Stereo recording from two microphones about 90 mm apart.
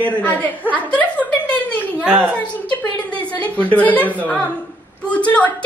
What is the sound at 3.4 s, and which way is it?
A woman's voice, 15° left (ahead or behind).